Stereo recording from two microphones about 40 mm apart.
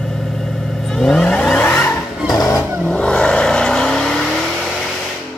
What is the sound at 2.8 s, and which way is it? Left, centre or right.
Vehicle, left.